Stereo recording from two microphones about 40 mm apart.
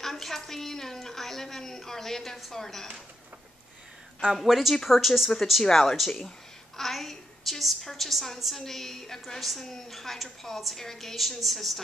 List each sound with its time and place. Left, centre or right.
0.0 s a woman's voice: centre
4.5 s a woman's voice: centre